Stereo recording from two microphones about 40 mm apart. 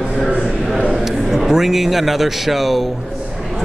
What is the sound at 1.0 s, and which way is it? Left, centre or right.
A man's voice, centre.